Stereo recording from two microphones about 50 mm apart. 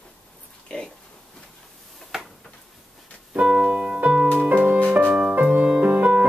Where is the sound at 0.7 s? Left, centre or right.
Left.